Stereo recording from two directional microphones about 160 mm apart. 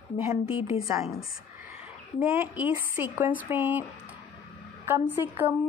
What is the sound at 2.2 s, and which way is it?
A woman's voice, 10° right (ahead or behind).